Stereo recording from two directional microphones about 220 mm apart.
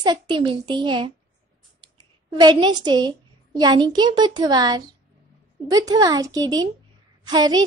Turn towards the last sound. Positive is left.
turn(degrees=-20)  # may be behind; listen again after turning